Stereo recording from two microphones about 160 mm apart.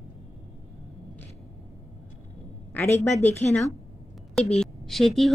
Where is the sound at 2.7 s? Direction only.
15° left (ahead or behind).